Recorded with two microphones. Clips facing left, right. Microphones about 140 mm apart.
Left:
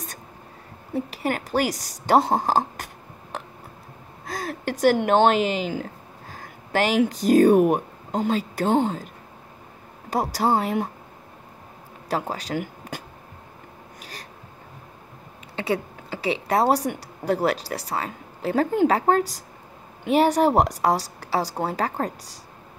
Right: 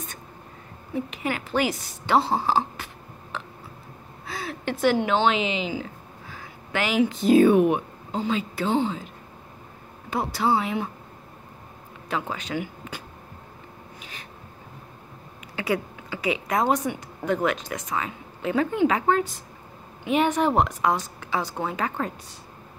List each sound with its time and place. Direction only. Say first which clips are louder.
0.9 s a woman's voice: left 2 dB; 40° left (ahead or behind)
12.1 s speech: left 2 dB; 40° left (ahead or behind)
15.5 s a sound: left 1 dB; 25° left (ahead or behind)
16.1 s speech: left 2 dB; 30° left (ahead or behind)